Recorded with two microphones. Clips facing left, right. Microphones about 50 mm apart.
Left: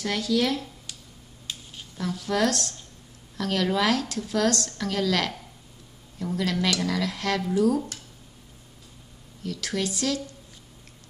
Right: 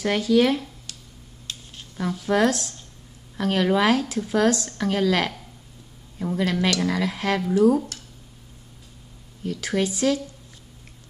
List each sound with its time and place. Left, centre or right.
0.0 s a woman's voice: right
0.9 s tick-tock: centre
1.5 s a sound: centre
2.0 s a woman's voice: right
9.4 s a woman's voice: right